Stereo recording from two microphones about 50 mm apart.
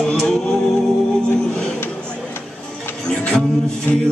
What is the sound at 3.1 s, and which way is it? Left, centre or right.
Music, centre.